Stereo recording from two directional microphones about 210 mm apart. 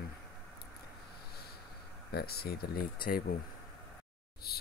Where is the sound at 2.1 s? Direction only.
50° left (ahead or behind).